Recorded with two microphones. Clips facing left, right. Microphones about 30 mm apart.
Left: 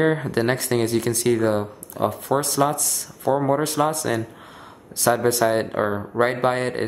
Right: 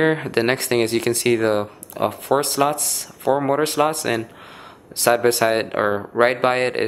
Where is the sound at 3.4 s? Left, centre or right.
Right.